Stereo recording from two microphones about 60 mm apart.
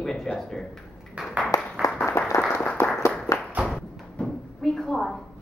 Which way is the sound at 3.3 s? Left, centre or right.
Left.